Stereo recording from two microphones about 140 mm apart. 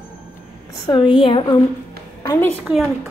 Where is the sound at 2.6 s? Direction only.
Centre (ahead or behind).